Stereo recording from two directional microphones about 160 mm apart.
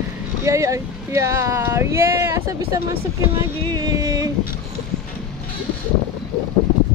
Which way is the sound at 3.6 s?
25° right (ahead or behind).